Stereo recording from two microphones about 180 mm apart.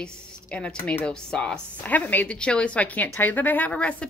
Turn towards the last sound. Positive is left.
turn(degrees=5)  # may be behind; listen again after turning